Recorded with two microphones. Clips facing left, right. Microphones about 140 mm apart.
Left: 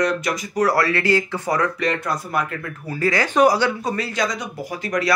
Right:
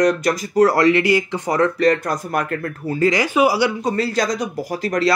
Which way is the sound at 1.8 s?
40° right (ahead or behind).